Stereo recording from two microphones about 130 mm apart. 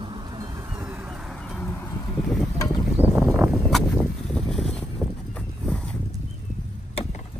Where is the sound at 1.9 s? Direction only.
30° left (ahead or behind).